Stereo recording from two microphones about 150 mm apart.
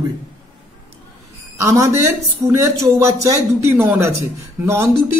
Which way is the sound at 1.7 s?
20° right (ahead or behind).